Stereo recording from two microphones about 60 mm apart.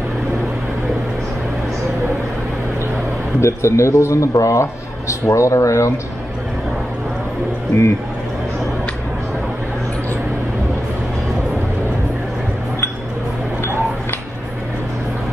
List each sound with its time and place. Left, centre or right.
3.3 s speech: left
7.7 s speech: left